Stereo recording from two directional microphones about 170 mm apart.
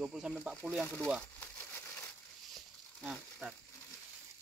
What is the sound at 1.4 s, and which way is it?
Crumpling, 10° left (ahead or behind).